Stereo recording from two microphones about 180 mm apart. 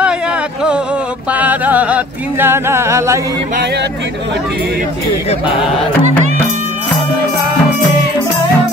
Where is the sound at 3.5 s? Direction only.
65° right (ahead or behind).